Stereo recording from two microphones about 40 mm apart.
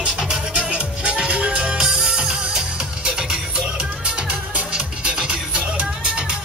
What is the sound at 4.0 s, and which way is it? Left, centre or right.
Music, right.